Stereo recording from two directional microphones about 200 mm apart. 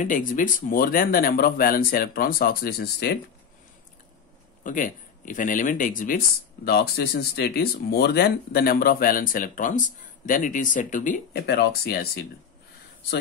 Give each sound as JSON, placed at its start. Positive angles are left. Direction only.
{"t": 0.0, "sound": "speech", "side_deg": 40}
{"t": 4.6, "sound": "speech", "side_deg": 40}